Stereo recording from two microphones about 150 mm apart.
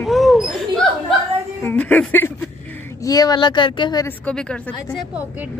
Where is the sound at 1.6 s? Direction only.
15° left (ahead or behind).